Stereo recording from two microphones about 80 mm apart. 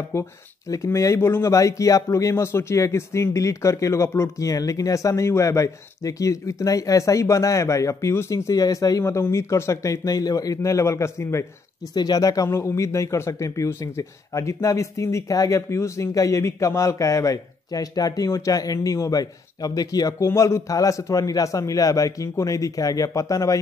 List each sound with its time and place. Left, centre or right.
0.1 s speech: left
9.0 s speech: left
11.9 s a man's voice: left
12.4 s a man's voice: left